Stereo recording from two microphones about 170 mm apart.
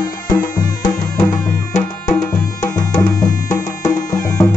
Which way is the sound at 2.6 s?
20° left (ahead or behind).